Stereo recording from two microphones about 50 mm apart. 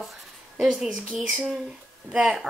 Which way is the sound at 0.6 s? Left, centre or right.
Centre.